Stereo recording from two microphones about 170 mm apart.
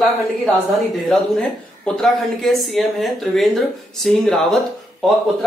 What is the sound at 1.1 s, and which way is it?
Speech, centre (ahead or behind).